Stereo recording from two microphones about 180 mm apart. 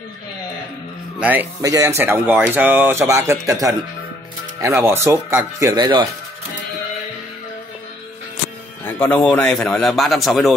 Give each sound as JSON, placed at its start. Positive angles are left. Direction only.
{"t": 1.2, "sound": "speech", "side_deg": -10}
{"t": 8.8, "sound": "a man's voice", "side_deg": 10}